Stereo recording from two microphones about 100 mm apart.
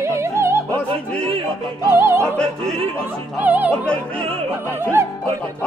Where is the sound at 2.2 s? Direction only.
10° left (ahead or behind).